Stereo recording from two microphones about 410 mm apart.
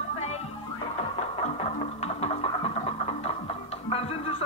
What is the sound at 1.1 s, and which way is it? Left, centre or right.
Music, centre.